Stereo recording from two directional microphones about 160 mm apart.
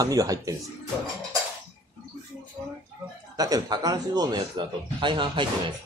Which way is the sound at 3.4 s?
25° right (ahead or behind).